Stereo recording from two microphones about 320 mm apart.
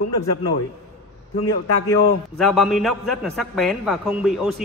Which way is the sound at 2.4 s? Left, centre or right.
Centre.